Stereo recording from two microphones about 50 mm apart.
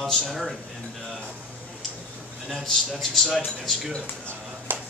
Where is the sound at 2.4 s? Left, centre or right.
Centre.